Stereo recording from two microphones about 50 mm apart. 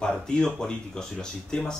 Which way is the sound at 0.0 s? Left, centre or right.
Centre.